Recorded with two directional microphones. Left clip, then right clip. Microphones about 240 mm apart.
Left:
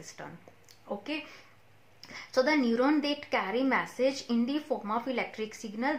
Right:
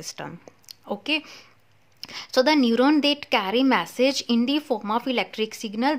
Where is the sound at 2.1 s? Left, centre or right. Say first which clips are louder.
Right 7 dB; right.